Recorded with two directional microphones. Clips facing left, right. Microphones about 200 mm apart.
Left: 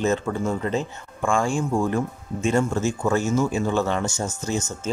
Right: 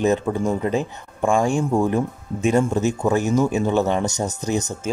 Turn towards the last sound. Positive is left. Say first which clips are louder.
# right 3 dB
turn(degrees=-15)  # may be behind; listen again after turning